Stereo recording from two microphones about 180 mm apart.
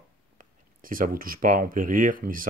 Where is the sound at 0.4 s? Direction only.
50° right (ahead or behind).